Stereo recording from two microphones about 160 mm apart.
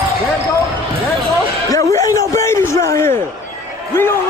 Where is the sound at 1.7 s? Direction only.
20° left (ahead or behind).